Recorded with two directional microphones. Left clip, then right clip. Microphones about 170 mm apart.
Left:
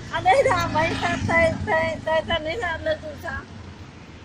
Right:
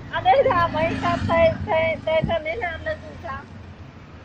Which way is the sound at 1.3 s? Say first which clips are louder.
Right 1 dB; 55° left (ahead or behind).